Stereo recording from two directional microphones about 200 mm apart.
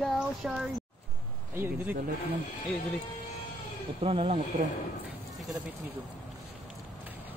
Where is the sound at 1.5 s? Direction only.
10° right (ahead or behind).